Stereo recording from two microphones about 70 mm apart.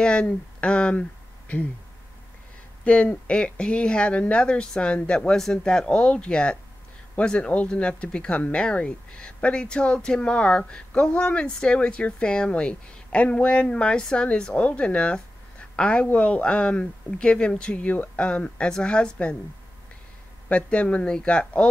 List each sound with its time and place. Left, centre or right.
0.0 s speech: centre
2.8 s speech: centre
20.4 s speech: centre